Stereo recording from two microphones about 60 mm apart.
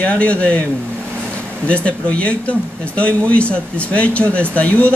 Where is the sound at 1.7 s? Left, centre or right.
Left.